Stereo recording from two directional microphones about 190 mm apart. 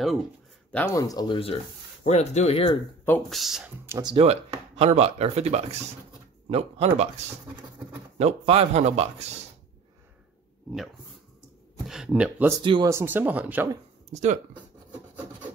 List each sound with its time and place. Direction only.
0.7 s speech: 10° left (ahead or behind)
2.0 s speech: 35° left (ahead or behind)
3.1 s speech: centre (ahead or behind)
3.8 s speech: 15° right (ahead or behind)
4.1 s speech: 30° right (ahead or behind)
11.9 s speech: 5° right (ahead or behind)
12.6 s speech: 25° right (ahead or behind)
12.9 s speech: 10° right (ahead or behind)
14.1 s speech: 40° right (ahead or behind)
14.9 s filing: 20° right (ahead or behind)